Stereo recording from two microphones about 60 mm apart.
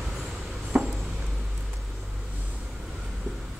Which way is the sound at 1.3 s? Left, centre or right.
Centre.